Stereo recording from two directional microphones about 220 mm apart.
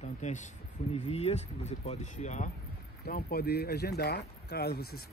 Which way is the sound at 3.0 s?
45° left (ahead or behind).